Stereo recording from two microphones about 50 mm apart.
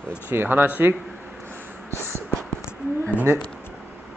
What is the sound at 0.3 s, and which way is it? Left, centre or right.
Speech, right.